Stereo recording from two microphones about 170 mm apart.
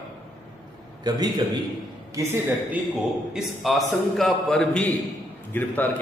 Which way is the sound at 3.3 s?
Centre (ahead or behind).